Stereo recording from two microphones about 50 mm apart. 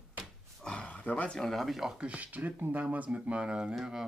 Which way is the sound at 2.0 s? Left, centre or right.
Right.